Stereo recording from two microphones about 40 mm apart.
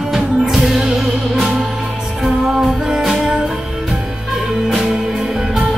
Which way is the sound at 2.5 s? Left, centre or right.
Centre.